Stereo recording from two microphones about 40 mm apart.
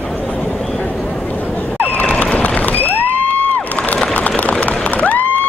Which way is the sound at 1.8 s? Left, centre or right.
Left.